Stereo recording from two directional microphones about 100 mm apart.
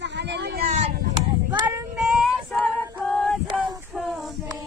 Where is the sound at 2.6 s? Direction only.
10° left (ahead or behind).